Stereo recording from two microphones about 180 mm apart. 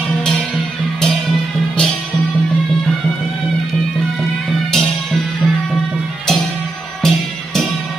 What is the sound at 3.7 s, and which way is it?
Music, centre (ahead or behind).